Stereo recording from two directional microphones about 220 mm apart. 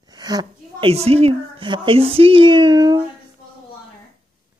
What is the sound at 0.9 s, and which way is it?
Speech, 30° right (ahead or behind).